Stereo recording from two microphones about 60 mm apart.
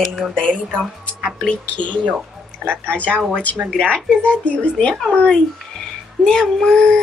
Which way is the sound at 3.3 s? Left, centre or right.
Left.